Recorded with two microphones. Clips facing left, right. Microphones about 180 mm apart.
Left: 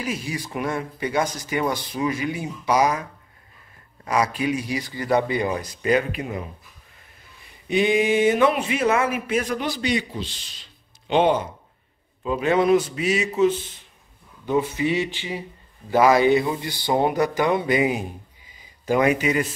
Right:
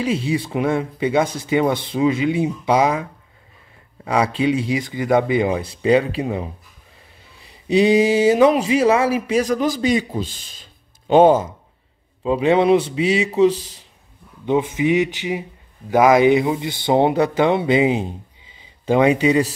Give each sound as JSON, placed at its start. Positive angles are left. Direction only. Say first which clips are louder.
{"t": 0.0, "sound": "speech", "louder": "right 8 dB", "side_deg": -30}
{"t": 4.1, "sound": "speech", "louder": "right 4 dB", "side_deg": -25}
{"t": 7.6, "sound": "speech", "louder": "right 5 dB", "side_deg": -35}
{"t": 12.2, "sound": "speech", "louder": "right 4 dB", "side_deg": -25}
{"t": 14.4, "sound": "speech", "louder": "right 4 dB", "side_deg": -20}